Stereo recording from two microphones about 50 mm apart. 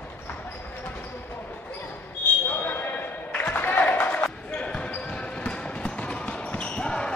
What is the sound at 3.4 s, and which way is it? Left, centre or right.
Music, left.